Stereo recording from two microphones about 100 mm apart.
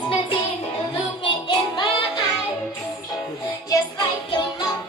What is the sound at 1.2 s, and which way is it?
Child singing, 50° left (ahead or behind).